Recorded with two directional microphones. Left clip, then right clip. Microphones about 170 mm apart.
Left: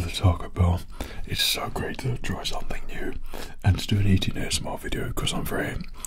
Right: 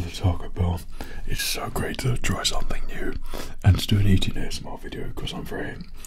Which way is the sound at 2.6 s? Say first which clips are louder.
Right 2 dB; 10° right (ahead or behind).